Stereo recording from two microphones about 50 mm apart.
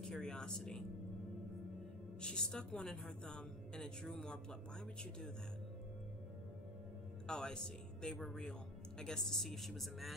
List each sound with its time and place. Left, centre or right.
0.0 s a woman's voice: centre
2.2 s a woman's voice: centre
7.2 s a woman's voice: centre